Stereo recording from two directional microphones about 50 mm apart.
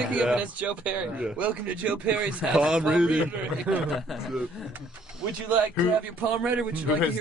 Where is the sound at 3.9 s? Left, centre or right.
Centre.